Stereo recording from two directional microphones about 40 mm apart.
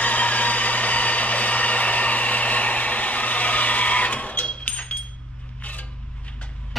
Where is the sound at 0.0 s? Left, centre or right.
Left.